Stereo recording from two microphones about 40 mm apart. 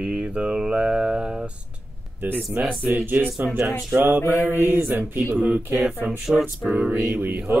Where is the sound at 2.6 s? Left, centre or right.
Right.